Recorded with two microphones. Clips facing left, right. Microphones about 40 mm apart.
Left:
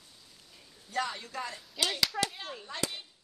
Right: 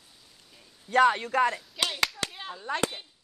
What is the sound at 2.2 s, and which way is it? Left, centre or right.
Speech, left.